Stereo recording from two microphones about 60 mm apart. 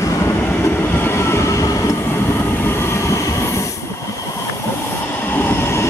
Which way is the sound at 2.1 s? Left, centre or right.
Left.